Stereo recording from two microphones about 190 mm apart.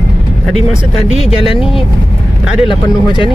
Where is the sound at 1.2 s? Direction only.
30° left (ahead or behind).